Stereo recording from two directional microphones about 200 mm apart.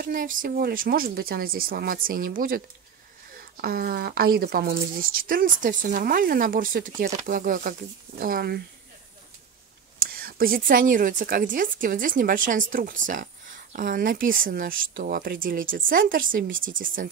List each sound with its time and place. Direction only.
0.0 s a woman's voice: 45° right (ahead or behind)
9.9 s a woman's voice: 45° right (ahead or behind)